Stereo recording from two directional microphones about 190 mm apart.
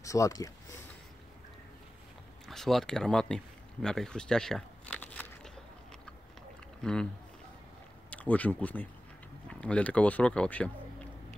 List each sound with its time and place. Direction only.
0.0 s speech: 15° left (ahead or behind)
2.4 s a sound: centre (ahead or behind)
6.8 s speech: 5° left (ahead or behind)
8.1 s speech: 5° left (ahead or behind)